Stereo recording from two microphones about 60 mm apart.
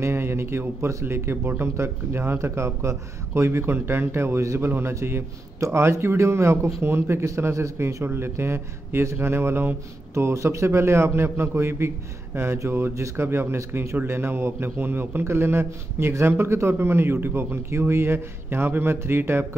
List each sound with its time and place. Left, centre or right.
0.0 s a man's voice: right
4.6 s speech: right
5.6 s a man's voice: right